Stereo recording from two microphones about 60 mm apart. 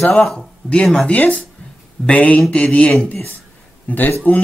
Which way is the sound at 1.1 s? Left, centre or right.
Left.